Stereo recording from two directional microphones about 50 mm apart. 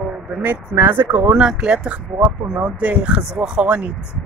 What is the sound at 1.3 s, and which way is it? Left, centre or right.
Speech, centre.